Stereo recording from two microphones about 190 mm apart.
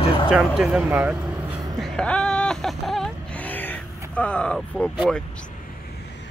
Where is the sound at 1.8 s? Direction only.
5° left (ahead or behind).